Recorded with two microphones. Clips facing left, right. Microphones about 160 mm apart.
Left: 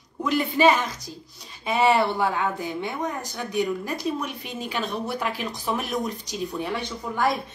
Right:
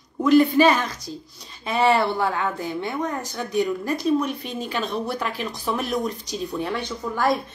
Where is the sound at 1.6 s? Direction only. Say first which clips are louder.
Right 1 dB; 15° left (ahead or behind).